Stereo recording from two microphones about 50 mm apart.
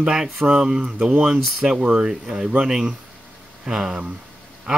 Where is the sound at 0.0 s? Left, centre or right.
Centre.